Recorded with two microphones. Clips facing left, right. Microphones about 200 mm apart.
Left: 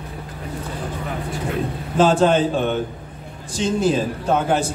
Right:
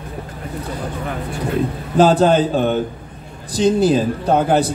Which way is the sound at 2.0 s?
35° right (ahead or behind).